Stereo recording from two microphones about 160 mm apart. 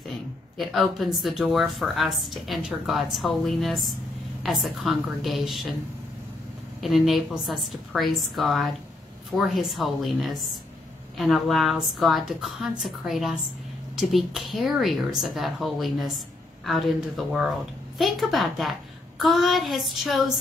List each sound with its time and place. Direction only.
0.1 s speech: centre (ahead or behind)
6.8 s speech: centre (ahead or behind)